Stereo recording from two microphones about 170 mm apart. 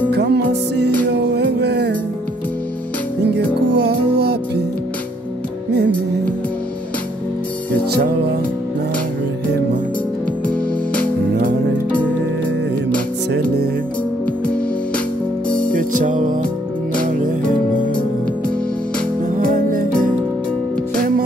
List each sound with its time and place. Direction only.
0.1 s music: 75° right (ahead or behind)
3.7 s music: 75° right (ahead or behind)
10.4 s music: 10° left (ahead or behind)
15.7 s music: 50° right (ahead or behind)
19.3 s music: 55° right (ahead or behind)